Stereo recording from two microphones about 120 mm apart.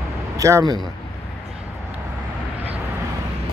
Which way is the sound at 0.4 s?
25° right (ahead or behind).